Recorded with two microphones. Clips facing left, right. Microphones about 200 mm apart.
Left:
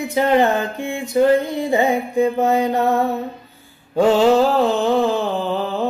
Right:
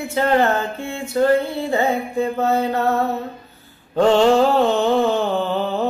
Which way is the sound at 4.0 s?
5° left (ahead or behind).